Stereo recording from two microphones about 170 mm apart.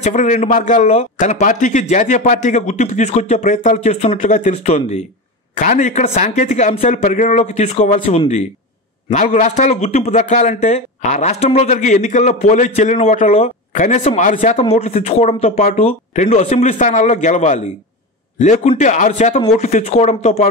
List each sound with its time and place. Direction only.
0.0 s a man's voice: 45° left (ahead or behind)
14.6 s a man's voice: 35° left (ahead or behind)